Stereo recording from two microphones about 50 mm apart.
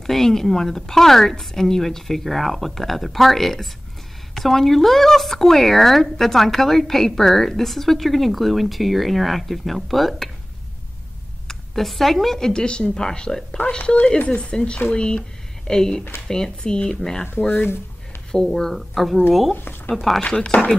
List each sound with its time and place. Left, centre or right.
0.0 s a woman's voice: centre
11.4 s speech: centre
18.3 s a woman's voice: centre
19.5 s speech: left
20.0 s a woman's voice: centre
20.2 s speech: left